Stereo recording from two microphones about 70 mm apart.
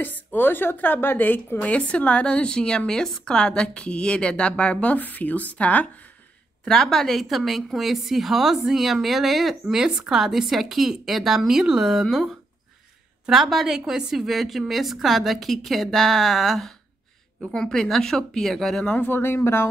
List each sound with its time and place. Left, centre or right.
0.0 s a woman's voice: left
1.6 s a woman's voice: centre
6.6 s a woman's voice: centre
18.9 s speech: left